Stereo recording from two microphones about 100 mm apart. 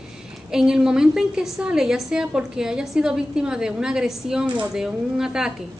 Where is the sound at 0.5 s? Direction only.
5° right (ahead or behind).